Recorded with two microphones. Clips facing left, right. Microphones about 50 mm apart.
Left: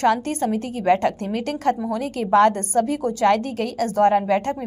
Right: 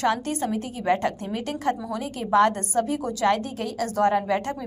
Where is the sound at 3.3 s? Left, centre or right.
Left.